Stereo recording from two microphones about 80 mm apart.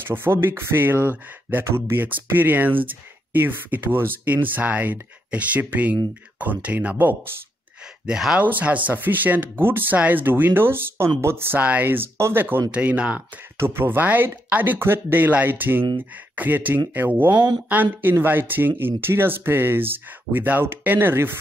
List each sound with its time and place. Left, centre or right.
0.0 s speech: right
8.1 s speech: centre
8.4 s speech: right
12.7 s speech: centre
13.6 s speech: right
18.0 s speech: right